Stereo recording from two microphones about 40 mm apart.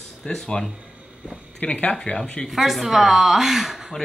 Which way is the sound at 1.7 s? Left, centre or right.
Left.